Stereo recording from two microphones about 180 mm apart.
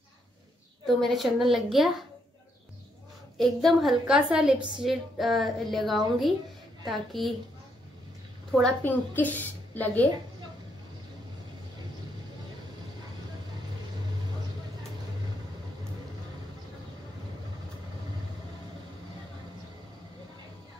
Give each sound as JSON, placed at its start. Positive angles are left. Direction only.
{"t": 0.8, "sound": "a woman's voice", "side_deg": 0}
{"t": 3.3, "sound": "a woman's voice", "side_deg": 0}
{"t": 4.6, "sound": "a woman's voice", "side_deg": -25}
{"t": 4.8, "sound": "a woman's voice", "side_deg": 0}
{"t": 8.5, "sound": "a woman's voice", "side_deg": 5}